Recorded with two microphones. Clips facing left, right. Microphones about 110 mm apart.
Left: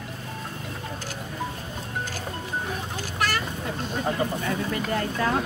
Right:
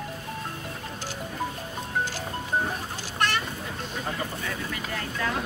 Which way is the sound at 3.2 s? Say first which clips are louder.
Even; 5° left (ahead or behind).